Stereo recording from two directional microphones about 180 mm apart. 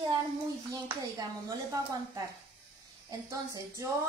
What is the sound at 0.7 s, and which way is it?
Speech, 20° right (ahead or behind).